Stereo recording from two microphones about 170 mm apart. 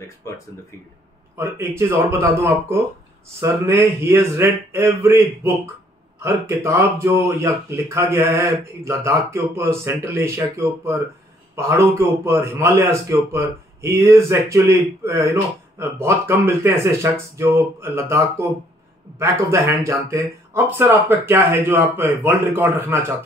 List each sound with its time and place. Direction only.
1.3 s a man's voice: 15° right (ahead or behind)
11.5 s speech: 15° right (ahead or behind)